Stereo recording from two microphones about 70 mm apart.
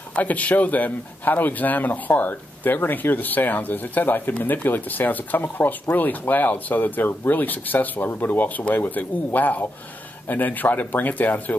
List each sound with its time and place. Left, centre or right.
0.1 s speech: left